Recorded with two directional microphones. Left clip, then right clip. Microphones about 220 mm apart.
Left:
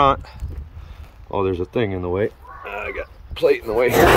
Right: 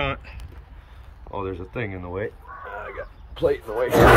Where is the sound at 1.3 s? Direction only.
45° left (ahead or behind).